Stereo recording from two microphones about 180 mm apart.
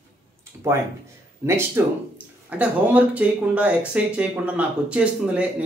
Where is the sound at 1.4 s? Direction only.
15° right (ahead or behind).